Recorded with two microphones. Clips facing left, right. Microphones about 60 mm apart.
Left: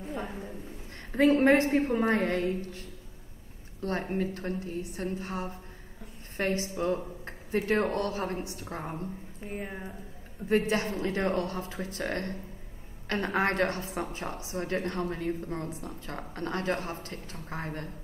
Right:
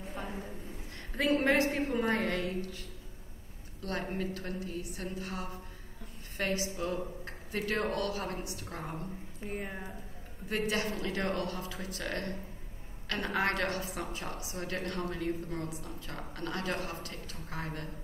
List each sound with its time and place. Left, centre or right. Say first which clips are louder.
1.1 s a woman's voice: left 6 dB; left
3.8 s a woman's voice: left 5 dB; left
9.4 s speech: left 1 dB; centre
10.5 s a woman's voice: left 6 dB; left